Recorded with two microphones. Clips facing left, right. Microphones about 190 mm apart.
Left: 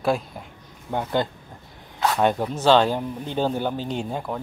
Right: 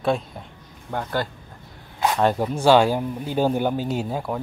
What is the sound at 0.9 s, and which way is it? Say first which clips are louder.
Speech: left 2 dB; 20° left (ahead or behind).